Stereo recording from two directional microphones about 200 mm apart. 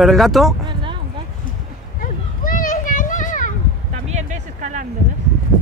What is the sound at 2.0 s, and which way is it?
Children playing, 45° left (ahead or behind).